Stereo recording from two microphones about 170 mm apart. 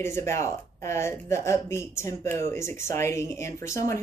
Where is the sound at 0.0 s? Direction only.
15° left (ahead or behind).